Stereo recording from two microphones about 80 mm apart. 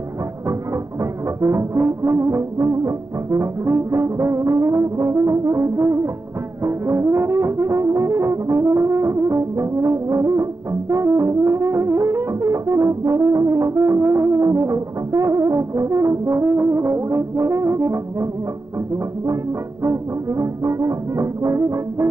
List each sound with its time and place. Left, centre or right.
1.4 s brass instrument: right
6.6 s music: right
19.8 s brass instrument: right